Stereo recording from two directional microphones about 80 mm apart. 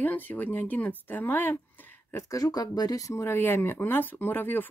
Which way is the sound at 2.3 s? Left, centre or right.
Left.